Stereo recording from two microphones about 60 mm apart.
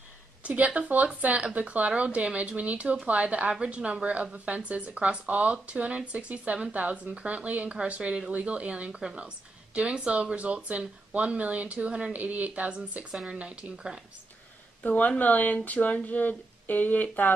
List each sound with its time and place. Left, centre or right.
0.4 s a woman's voice: right
13.1 s speech: centre
13.4 s a woman's voice: centre
14.8 s speech: left